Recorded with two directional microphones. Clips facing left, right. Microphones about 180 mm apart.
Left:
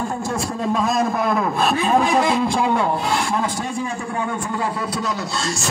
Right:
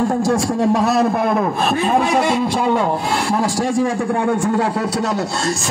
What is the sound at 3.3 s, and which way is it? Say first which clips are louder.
A man's voice: right 6 dB; 85° right.